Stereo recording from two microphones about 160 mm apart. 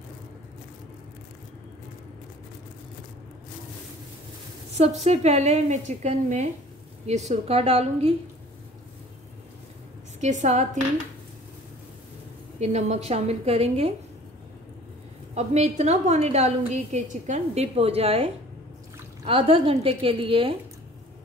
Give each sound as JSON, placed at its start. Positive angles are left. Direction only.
{"t": 4.7, "sound": "a woman's voice", "side_deg": -45}
{"t": 10.2, "sound": "a woman's voice", "side_deg": -50}
{"t": 12.5, "sound": "a woman's voice", "side_deg": -45}
{"t": 15.3, "sound": "a woman's voice", "side_deg": -45}